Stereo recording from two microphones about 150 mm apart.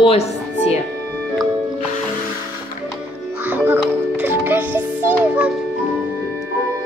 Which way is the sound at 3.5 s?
10° right (ahead or behind).